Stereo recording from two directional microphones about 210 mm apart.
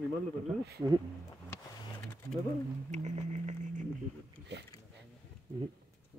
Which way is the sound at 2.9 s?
35° right (ahead or behind).